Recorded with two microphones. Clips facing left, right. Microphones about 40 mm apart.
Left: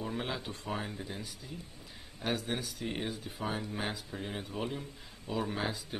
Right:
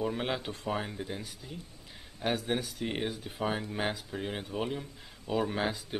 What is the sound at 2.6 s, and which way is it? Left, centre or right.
Speech, right.